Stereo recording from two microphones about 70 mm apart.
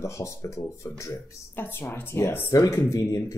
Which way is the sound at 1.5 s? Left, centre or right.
Left.